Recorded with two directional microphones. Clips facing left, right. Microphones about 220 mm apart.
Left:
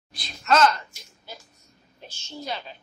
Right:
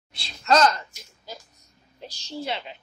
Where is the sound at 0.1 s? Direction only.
30° right (ahead or behind).